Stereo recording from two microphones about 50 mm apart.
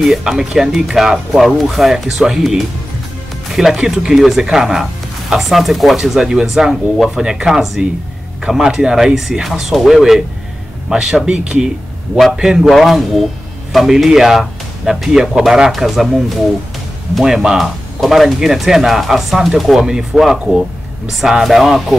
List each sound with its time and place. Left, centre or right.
0.0 s speech: centre
10.9 s speech: centre